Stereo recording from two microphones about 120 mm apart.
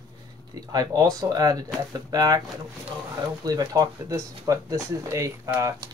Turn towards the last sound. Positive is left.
turn(degrees=-25)  # may be behind; listen again after turning